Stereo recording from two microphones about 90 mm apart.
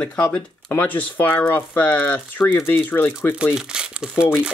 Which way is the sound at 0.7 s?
20° left (ahead or behind).